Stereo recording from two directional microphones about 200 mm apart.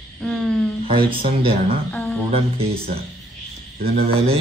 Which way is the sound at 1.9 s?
10° left (ahead or behind).